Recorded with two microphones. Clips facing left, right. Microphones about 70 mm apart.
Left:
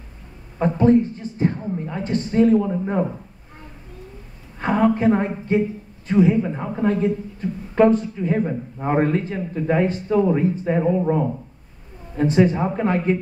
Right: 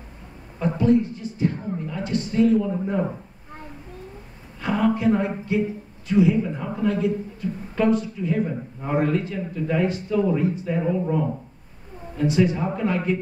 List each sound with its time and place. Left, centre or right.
0.6 s speech: left
4.6 s speech: left